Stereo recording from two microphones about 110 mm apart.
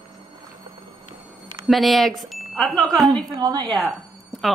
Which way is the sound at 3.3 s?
35° right (ahead or behind).